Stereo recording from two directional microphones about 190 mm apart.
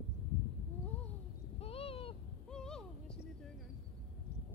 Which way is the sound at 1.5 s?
30° left (ahead or behind).